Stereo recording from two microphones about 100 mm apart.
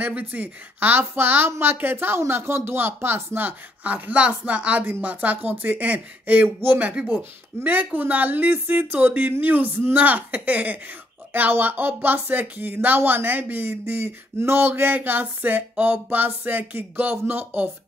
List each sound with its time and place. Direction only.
0.0 s a woman's voice: 15° right (ahead or behind)